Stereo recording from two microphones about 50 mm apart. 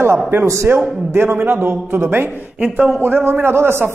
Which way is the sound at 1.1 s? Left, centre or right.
Right.